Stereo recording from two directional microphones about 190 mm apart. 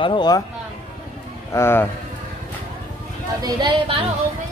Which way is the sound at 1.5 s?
15° left (ahead or behind).